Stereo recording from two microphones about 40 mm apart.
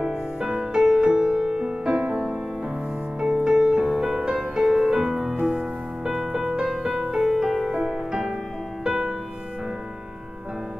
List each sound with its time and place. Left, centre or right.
0.0 s music: centre
3.3 s music: centre
3.5 s music: centre
7.2 s music: centre
7.7 s music: centre